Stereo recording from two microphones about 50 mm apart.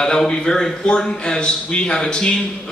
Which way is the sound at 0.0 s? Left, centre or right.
Centre.